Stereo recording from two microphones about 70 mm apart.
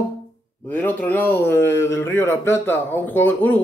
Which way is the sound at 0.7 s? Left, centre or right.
Left.